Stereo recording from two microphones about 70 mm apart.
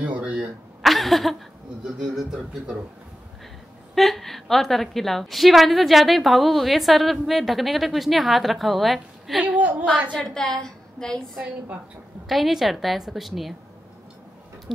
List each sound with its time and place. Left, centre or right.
0.0 s a sound: centre
0.8 s a sound: centre
2.0 s a man's voice: centre
3.9 s a woman's voice: centre
9.4 s a woman's voice: centre
10.1 s a woman's voice: centre
12.3 s a woman's voice: centre